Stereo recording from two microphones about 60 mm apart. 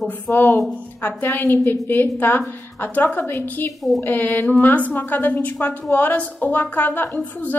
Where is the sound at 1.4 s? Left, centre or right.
Left.